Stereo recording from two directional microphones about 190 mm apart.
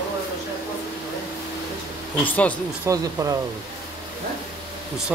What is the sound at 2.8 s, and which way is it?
Speech, 15° right (ahead or behind).